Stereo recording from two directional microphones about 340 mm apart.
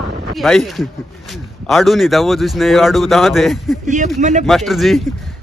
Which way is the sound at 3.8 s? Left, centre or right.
Right.